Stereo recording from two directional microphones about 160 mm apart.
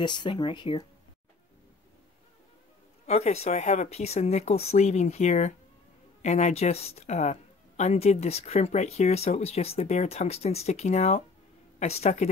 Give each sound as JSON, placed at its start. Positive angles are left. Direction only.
{"t": 0.0, "sound": "speech", "side_deg": 30}
{"t": 3.1, "sound": "speech", "side_deg": 40}